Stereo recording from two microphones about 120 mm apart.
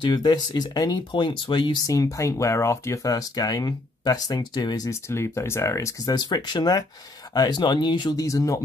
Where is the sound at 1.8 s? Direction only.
30° left (ahead or behind).